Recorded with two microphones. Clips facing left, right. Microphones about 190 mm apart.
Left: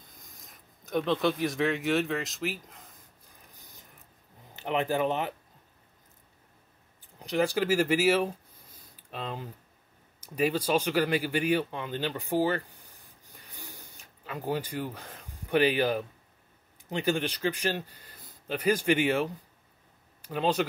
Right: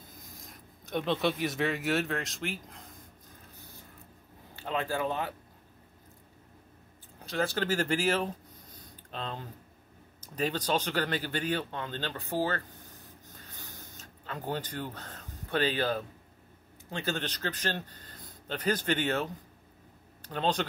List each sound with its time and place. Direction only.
0.1 s speech: centre (ahead or behind)
3.4 s a sound: 15° left (ahead or behind)
4.6 s speech: 20° left (ahead or behind)
7.2 s speech: 15° left (ahead or behind)
13.3 s a sound: 15° left (ahead or behind)
16.9 s speech: 15° left (ahead or behind)